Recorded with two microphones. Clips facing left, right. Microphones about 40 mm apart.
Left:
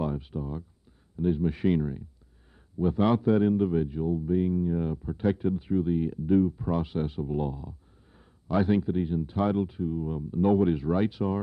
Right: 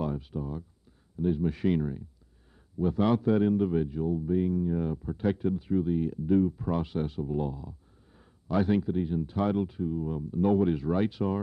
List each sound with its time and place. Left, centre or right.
0.0 s a sound: centre
1.1 s speech: left
2.8 s speech: left
3.2 s speech: centre
6.4 s speech: centre; by 7.7 s left
8.5 s speech: centre
10.9 s speech: centre